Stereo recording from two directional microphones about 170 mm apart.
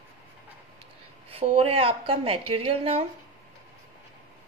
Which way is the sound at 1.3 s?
35° right (ahead or behind).